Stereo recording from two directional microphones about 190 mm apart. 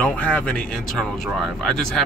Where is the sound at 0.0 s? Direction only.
5° left (ahead or behind).